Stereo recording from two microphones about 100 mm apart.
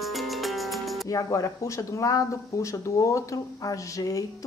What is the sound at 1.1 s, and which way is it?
Speech, 35° left (ahead or behind).